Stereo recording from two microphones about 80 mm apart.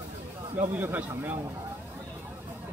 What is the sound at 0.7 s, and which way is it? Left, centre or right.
Speech, right.